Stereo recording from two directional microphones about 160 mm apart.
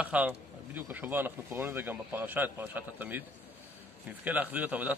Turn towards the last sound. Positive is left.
turn(degrees=-10)  # may be behind; listen again after turning